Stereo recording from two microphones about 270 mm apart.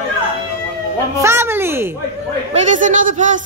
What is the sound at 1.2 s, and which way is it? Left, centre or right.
Speech, centre.